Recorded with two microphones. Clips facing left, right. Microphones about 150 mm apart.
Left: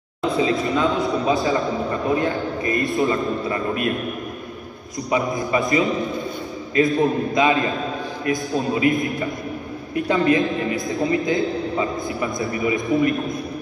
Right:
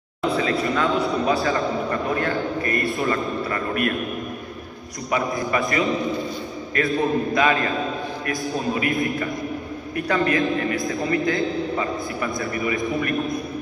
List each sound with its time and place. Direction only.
0.4 s a man's voice: 20° left (ahead or behind)
5.1 s a man's voice: 20° left (ahead or behind)